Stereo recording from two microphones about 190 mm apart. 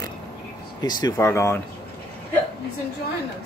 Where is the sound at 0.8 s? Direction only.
20° left (ahead or behind).